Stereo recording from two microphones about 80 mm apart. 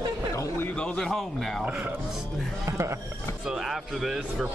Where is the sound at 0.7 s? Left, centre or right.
Centre.